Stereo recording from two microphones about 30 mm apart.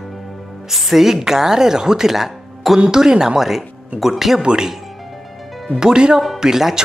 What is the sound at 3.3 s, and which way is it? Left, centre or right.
A woman's voice, centre.